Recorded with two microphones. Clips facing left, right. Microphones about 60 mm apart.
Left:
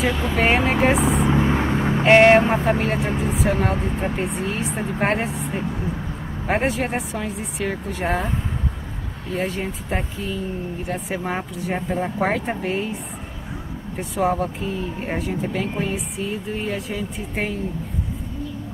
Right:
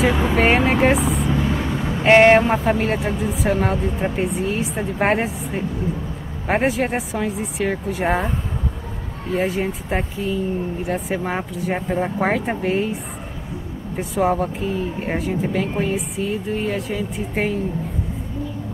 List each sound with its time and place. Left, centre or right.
0.1 s speech: centre
0.4 s speech: centre
1.2 s vehicle: left
2.0 s speech: centre
9.4 s speech: centre
13.9 s speech: centre